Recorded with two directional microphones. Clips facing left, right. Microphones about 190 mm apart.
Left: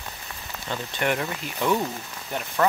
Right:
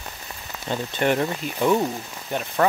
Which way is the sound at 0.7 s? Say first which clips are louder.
Right 4 dB; 30° right (ahead or behind).